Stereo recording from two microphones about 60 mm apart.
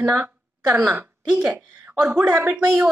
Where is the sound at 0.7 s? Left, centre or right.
Right.